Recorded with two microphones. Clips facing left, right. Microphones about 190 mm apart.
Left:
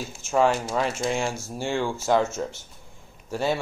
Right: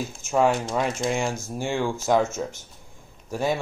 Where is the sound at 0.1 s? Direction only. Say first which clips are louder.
Even; centre (ahead or behind).